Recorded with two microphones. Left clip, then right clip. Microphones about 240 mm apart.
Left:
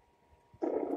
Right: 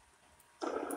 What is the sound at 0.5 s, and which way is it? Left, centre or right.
Purr, centre.